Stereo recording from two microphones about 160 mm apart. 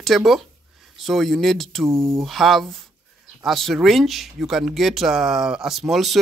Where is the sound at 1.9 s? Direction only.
15° right (ahead or behind).